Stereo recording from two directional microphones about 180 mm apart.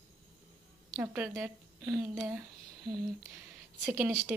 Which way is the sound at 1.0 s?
10° right (ahead or behind).